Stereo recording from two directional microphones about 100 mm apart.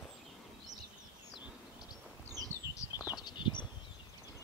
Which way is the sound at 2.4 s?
35° right (ahead or behind).